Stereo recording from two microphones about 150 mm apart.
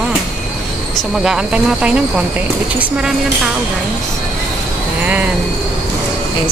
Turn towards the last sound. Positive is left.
turn(degrees=-10)  # may be behind; listen again after turning